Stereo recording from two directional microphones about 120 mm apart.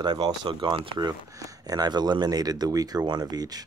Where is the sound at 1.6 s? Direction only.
35° right (ahead or behind).